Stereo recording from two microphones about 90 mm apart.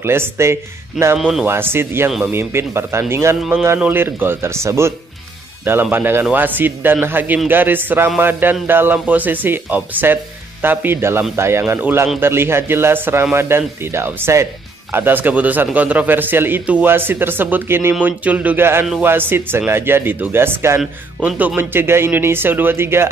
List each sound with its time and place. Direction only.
0.0 s speech: 30° right (ahead or behind)
1.1 s speech: 10° right (ahead or behind)
1.4 s speech: 25° right (ahead or behind)
21.2 s speech: 10° right (ahead or behind)
21.5 s speech: 25° right (ahead or behind)